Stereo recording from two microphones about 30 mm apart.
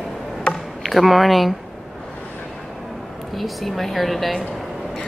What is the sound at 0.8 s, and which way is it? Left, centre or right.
Speech, centre.